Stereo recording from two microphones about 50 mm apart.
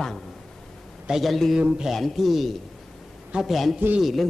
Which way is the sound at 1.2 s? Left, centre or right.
Centre.